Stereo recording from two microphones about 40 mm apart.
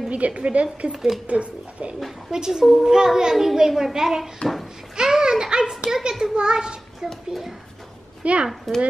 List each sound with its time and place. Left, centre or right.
0.1 s a woman's voice: right
2.3 s a child's voice: centre
8.2 s a child's voice: right
8.7 s speech: centre